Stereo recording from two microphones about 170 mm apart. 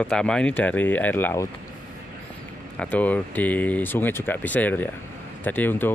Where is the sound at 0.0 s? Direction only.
5° left (ahead or behind).